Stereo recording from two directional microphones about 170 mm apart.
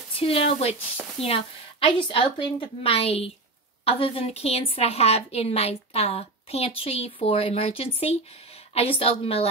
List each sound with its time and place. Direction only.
0.2 s a woman's voice: 35° left (ahead or behind)